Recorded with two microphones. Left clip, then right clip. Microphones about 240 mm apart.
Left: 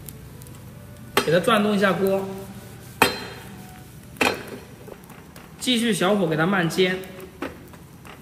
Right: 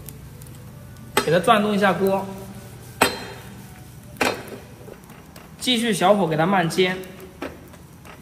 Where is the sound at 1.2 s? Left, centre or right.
Centre.